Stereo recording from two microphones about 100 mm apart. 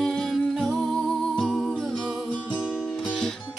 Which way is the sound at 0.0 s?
5° left (ahead or behind).